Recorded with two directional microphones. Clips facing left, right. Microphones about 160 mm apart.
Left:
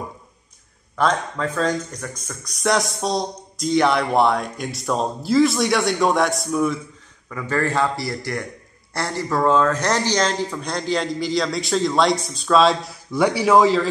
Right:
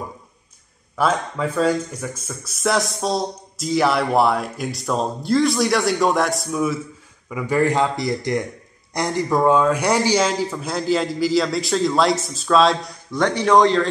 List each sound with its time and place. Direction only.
0.9 s speech: 10° right (ahead or behind)